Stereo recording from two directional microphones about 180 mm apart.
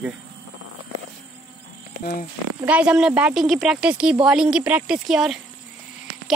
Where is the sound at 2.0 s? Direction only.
50° left (ahead or behind).